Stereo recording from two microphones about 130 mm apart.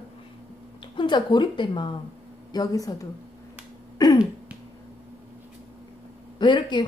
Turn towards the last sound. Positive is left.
turn(degrees=35)  # may be behind; listen again after turning